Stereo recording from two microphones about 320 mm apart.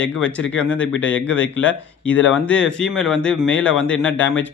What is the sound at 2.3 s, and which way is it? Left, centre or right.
A man's voice, centre.